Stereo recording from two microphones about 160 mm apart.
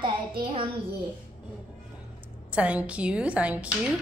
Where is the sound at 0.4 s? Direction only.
35° right (ahead or behind).